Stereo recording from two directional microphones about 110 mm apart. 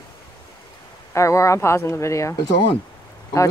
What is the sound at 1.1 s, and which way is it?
Speech, 25° left (ahead or behind).